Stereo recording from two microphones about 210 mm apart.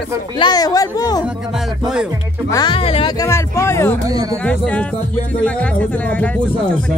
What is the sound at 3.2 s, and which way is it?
Speech, 15° left (ahead or behind).